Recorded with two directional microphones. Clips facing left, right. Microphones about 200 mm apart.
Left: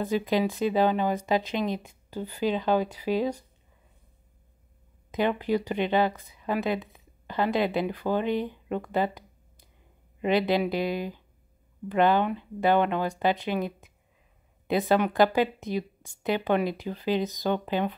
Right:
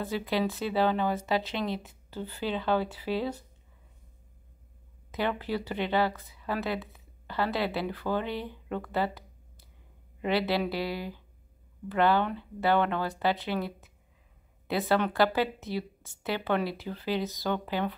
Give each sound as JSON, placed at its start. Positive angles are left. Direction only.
{"t": 0.0, "sound": "speech", "side_deg": 15}
{"t": 5.1, "sound": "speech", "side_deg": 15}
{"t": 10.2, "sound": "speech", "side_deg": 20}